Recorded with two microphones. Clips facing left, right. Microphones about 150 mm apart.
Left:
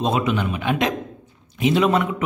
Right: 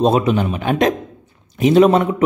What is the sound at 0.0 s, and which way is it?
A man's voice, 35° right (ahead or behind).